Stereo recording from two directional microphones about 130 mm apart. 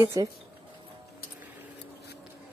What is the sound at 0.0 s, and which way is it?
Speech, 25° right (ahead or behind).